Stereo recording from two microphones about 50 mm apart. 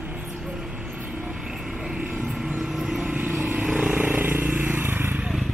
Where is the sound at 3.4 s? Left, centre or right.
Right.